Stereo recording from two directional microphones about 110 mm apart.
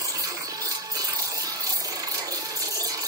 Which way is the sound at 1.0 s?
35° right (ahead or behind).